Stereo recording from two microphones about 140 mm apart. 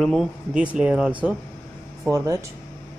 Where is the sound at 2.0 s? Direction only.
20° right (ahead or behind).